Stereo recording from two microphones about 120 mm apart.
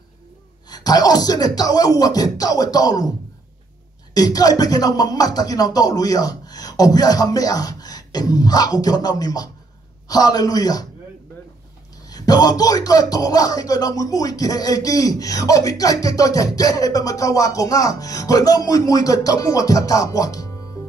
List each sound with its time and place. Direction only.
0.7 s speech: 35° left (ahead or behind)
4.1 s speech: 30° left (ahead or behind)
12.1 s speech: 30° left (ahead or behind)